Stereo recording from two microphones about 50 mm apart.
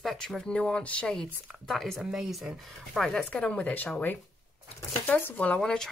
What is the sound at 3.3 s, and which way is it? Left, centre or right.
Speech, left.